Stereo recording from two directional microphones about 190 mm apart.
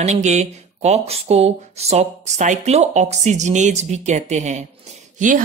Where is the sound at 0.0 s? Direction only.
35° right (ahead or behind).